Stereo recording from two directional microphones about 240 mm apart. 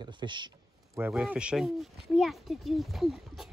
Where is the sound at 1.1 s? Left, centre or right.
Centre.